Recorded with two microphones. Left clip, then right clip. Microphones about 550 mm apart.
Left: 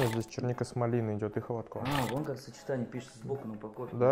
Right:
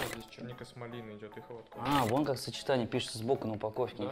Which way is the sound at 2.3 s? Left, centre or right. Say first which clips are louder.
Right 4 dB; right.